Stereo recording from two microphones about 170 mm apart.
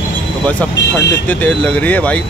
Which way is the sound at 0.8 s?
90° left.